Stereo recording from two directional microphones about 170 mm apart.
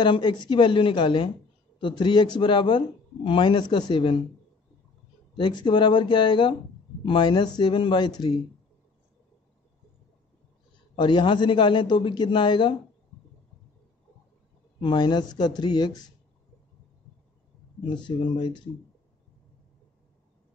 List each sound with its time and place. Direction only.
0.0 s a man's voice: 25° left (ahead or behind)
5.3 s a man's voice: 25° left (ahead or behind)
11.0 s a man's voice: 25° left (ahead or behind)
14.8 s a man's voice: 25° left (ahead or behind)
17.8 s a man's voice: 30° left (ahead or behind)